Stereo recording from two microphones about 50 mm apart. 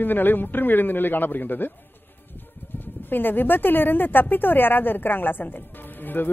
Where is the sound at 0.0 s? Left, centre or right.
Left.